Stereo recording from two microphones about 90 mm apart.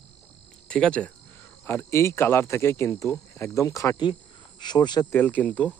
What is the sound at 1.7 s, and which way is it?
Speech, 25° left (ahead or behind).